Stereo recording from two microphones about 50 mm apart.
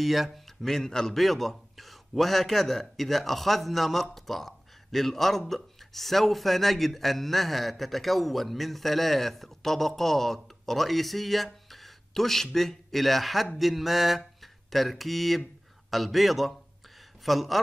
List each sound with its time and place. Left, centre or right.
0.0 s a man's voice: centre
13.6 s mantra: centre
15.9 s a man's voice: centre